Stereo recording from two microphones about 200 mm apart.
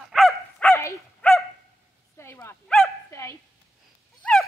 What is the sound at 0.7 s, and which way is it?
Dog, 10° left (ahead or behind).